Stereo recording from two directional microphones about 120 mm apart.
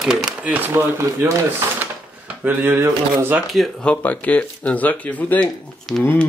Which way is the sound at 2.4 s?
15° right (ahead or behind).